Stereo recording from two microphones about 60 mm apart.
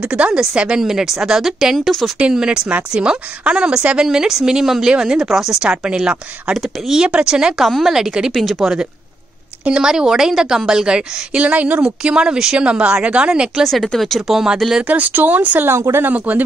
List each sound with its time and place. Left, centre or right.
0.0 s a woman's voice: centre
2.3 s a woman's voice: centre
8.3 s speech: centre
9.7 s a woman's voice: centre
13.9 s speech: centre
14.8 s speech: right
15.7 s speech: right
16.1 s speech: right